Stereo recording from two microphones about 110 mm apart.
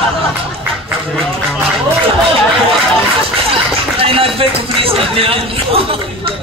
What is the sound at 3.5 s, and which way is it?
Speech, 60° right (ahead or behind).